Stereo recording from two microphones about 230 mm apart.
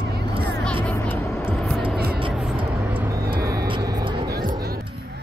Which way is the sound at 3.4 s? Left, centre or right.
Centre.